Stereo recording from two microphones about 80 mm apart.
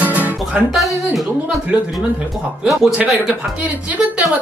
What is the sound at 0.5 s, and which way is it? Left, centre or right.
Music, centre.